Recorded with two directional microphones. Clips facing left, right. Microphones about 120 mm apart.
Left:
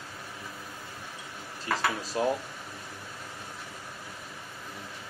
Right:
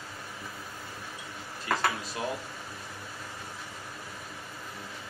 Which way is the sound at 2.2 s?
35° left (ahead or behind).